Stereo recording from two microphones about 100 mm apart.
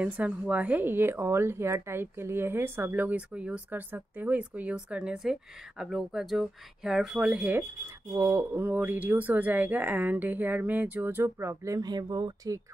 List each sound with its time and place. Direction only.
0.0 s speech: 15° right (ahead or behind)
8.1 s speech: 35° right (ahead or behind)
8.5 s speech: 15° right (ahead or behind)
11.8 s speech: 45° right (ahead or behind)